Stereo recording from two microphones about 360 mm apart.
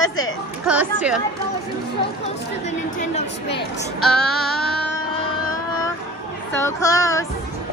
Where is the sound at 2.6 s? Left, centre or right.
Centre.